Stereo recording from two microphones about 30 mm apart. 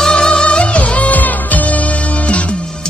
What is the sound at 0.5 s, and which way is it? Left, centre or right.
Music, left.